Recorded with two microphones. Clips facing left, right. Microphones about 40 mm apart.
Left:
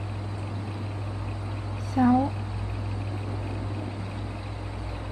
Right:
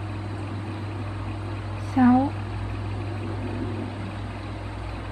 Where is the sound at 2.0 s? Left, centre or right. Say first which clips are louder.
Right 3 dB; right.